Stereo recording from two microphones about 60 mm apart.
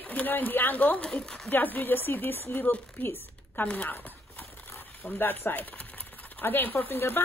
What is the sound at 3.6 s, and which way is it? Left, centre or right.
Horse, left.